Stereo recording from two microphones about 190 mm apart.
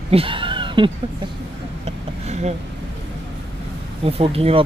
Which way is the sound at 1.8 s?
35° right (ahead or behind).